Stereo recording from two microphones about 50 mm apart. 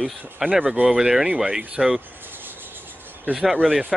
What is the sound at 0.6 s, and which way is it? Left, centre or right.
Speech, right.